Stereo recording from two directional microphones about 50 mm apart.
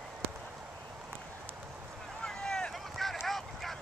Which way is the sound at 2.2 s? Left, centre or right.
Centre.